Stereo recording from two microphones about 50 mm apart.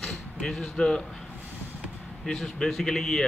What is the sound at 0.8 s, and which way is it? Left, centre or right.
Speech, centre.